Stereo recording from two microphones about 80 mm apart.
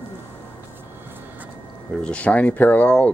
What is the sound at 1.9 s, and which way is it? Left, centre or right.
Speech, centre.